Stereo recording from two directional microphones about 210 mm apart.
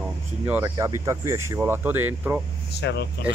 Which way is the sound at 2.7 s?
55° left (ahead or behind).